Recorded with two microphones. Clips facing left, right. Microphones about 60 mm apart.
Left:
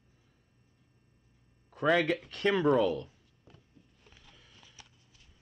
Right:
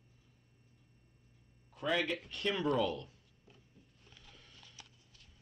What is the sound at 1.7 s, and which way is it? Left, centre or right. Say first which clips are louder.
Speech: left 7 dB; left.